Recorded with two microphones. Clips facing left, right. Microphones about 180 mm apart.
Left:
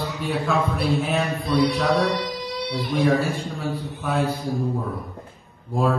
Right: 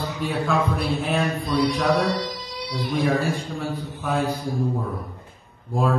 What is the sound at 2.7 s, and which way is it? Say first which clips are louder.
Speech: right 1 dB; 65° left (ahead or behind).